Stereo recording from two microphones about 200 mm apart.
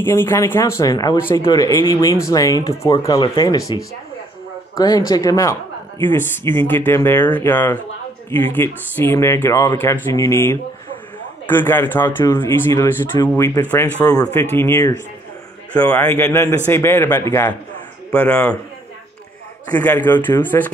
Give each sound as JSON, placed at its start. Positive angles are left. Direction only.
{"t": 0.0, "sound": "a woman's voice", "side_deg": 10}
{"t": 19.7, "sound": "a woman's voice", "side_deg": 10}